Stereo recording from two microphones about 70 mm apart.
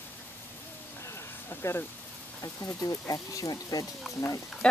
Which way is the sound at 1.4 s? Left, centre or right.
Left.